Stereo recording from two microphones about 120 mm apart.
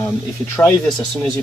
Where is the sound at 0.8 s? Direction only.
5° left (ahead or behind).